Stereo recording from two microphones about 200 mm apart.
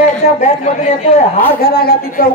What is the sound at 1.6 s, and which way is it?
Speech, 50° left (ahead or behind).